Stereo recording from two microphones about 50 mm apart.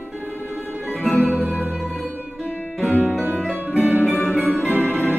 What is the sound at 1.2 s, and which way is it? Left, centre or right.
Music, right.